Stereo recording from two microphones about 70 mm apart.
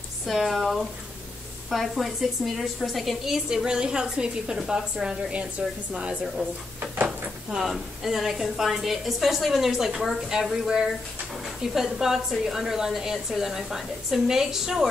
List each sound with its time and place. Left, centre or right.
0.3 s a woman's voice: centre
7.5 s a woman's voice: centre